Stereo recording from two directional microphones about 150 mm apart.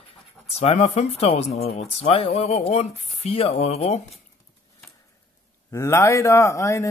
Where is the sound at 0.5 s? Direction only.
40° left (ahead or behind).